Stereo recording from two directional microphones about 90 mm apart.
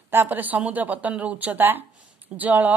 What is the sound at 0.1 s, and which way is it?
A woman's voice, 25° right (ahead or behind).